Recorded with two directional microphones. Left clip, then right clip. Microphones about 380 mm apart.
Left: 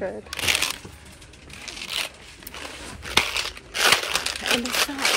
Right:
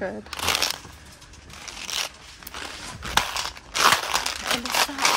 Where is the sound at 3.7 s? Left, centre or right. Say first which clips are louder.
Even; centre.